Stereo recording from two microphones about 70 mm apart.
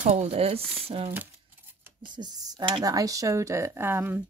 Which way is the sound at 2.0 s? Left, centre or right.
Right.